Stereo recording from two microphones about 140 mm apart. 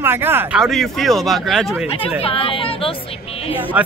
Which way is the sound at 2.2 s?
40° left (ahead or behind).